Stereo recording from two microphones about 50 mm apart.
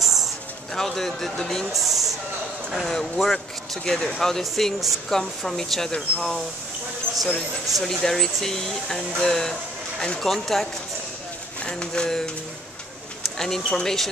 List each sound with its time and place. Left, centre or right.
0.0 s a sound: centre
0.7 s speech: centre
1.7 s a sound: centre
2.9 s speech: centre
7.8 s speech: centre
11.6 s speech: centre
13.4 s speech: centre